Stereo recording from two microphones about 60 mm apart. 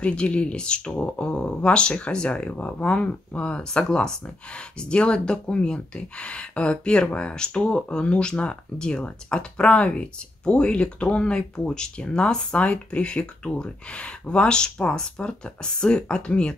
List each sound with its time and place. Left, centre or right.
0.0 s speech: centre